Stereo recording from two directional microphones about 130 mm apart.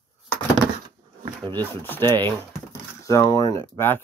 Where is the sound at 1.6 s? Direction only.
15° left (ahead or behind).